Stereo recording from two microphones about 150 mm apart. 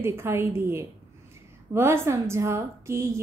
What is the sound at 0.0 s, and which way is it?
A woman's voice, 15° right (ahead or behind).